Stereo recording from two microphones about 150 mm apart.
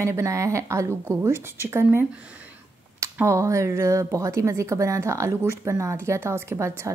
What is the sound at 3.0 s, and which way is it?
Speech, 20° right (ahead or behind).